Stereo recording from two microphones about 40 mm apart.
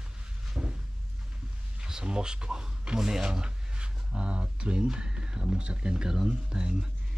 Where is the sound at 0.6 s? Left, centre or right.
Right.